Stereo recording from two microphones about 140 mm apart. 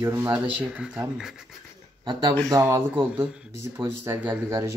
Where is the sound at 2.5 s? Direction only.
20° right (ahead or behind).